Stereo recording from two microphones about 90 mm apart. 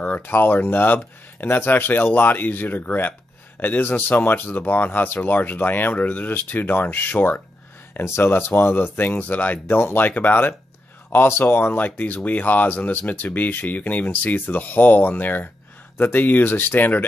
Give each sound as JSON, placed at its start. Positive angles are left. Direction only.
{"t": 0.0, "sound": "speech", "side_deg": 20}